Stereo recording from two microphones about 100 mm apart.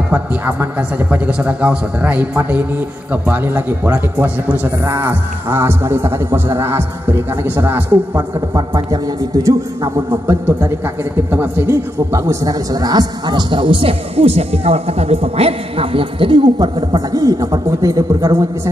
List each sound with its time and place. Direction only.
0.1 s a man's voice: 15° right (ahead or behind)
8.5 s a man's voice: 35° right (ahead or behind)
10.2 s a man's voice: 25° right (ahead or behind)